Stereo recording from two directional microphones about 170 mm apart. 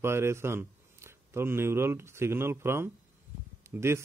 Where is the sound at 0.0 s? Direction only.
15° right (ahead or behind).